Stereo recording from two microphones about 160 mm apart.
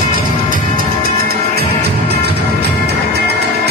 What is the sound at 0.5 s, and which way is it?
Music, 65° right (ahead or behind).